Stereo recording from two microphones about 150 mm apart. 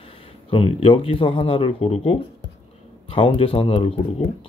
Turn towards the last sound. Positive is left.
turn(degrees=35)  # may be behind; listen again after turning